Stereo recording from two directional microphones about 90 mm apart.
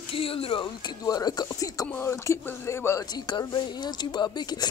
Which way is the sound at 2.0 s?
30° left (ahead or behind).